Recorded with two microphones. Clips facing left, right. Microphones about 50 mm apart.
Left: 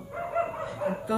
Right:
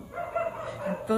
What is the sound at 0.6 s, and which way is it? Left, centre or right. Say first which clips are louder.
Dog: left 1 dB; centre.